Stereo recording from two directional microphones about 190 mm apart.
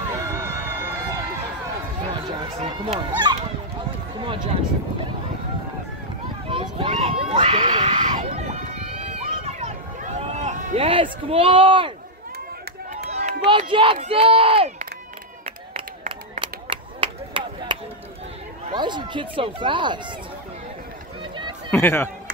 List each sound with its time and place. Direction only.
0.1 s run: 15° right (ahead or behind)
2.2 s speech: 25° right (ahead or behind)
6.5 s a sound: 25° right (ahead or behind)
13.1 s run: 40° right (ahead or behind)
13.5 s speech: 25° right (ahead or behind)
16.7 s chop: 25° right (ahead or behind)
18.7 s speech: 25° right (ahead or behind)
21.2 s run: 25° right (ahead or behind)
21.6 s speech: 10° left (ahead or behind)